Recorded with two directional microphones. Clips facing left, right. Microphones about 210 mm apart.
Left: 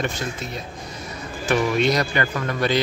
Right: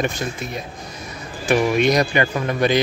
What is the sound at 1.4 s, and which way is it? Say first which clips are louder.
Speech: right 3 dB; 15° right (ahead or behind).